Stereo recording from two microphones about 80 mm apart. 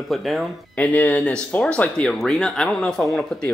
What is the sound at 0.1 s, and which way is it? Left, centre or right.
Speech, centre.